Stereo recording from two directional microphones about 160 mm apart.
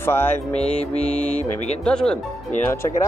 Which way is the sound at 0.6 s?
40° left (ahead or behind).